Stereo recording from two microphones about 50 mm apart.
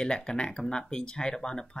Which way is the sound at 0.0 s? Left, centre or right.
Centre.